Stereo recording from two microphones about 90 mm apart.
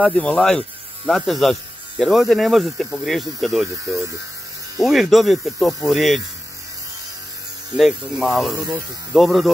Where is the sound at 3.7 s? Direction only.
35° right (ahead or behind).